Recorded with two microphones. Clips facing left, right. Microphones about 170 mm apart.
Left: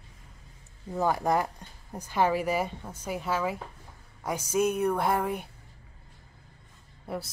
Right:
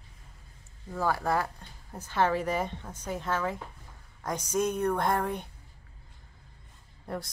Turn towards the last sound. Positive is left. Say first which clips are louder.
# left 1 dB
turn(degrees=5)  # may be behind; listen again after turning